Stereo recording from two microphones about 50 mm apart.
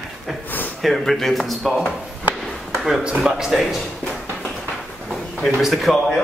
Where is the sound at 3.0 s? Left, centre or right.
Centre.